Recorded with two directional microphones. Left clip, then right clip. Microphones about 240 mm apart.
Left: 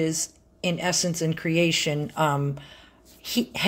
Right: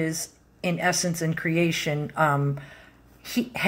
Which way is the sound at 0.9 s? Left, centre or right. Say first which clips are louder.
Left 1 dB; left.